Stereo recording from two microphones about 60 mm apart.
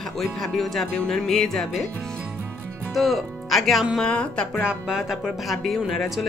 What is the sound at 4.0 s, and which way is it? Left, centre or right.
Speech, centre.